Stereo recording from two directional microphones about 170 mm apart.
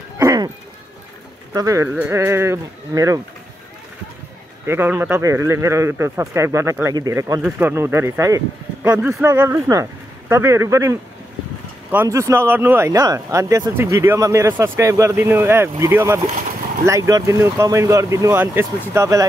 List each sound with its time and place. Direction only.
0.2 s dog: 20° right (ahead or behind)
1.5 s speech: 20° right (ahead or behind)
4.6 s speech: 10° right (ahead or behind)